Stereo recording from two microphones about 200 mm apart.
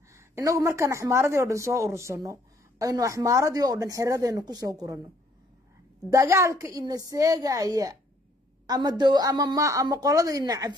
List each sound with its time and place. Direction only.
0.1 s speech: 15° right (ahead or behind)
6.1 s speech: 15° right (ahead or behind)